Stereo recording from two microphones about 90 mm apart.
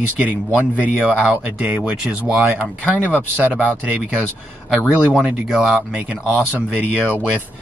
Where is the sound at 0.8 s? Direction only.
15° right (ahead or behind).